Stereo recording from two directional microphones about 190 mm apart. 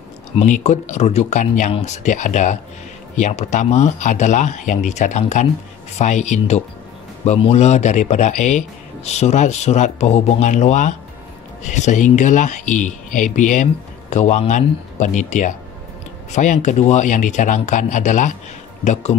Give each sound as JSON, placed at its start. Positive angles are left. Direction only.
{"t": 0.4, "sound": "speech", "side_deg": 35}